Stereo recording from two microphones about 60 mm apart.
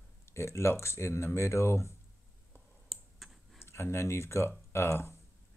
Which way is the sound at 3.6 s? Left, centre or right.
Left.